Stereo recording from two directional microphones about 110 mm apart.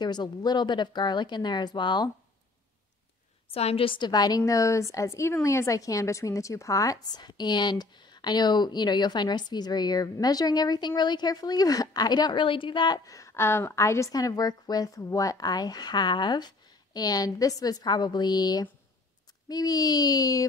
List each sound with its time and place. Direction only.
0.0 s speech: 40° left (ahead or behind)
3.5 s a woman's voice: 60° left (ahead or behind); by 20.4 s 35° left (ahead or behind)